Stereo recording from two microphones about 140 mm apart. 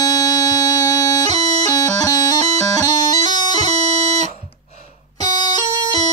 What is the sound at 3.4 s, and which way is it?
Bagpipes, 30° left (ahead or behind).